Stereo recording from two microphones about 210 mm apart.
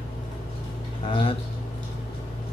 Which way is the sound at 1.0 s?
25° left (ahead or behind).